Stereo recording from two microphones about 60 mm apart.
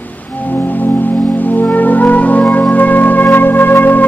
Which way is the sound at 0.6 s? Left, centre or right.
Left.